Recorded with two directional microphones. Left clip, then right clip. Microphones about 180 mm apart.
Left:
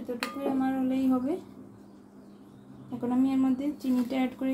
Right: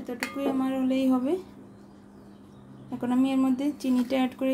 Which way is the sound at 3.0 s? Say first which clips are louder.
Right 2 dB; 50° right (ahead or behind).